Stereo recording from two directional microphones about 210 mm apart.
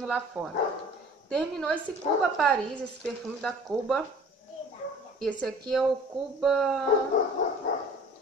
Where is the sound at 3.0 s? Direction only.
5° left (ahead or behind).